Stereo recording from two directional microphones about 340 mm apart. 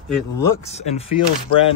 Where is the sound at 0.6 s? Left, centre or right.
Centre.